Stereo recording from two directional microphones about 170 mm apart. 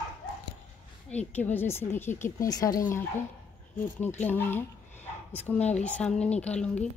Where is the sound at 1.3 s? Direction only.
10° left (ahead or behind).